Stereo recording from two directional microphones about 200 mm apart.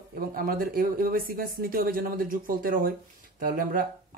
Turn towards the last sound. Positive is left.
turn(degrees=-45)  # may be behind; listen again after turning